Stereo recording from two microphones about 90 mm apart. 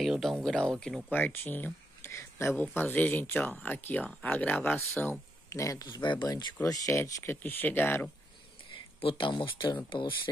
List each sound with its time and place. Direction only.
0.0 s speech: centre (ahead or behind)
1.1 s speech: 20° left (ahead or behind)
5.5 s speech: 35° left (ahead or behind)
6.7 s speech: 35° left (ahead or behind)
7.4 s speech: 20° left (ahead or behind)
9.0 s speech: 65° left (ahead or behind)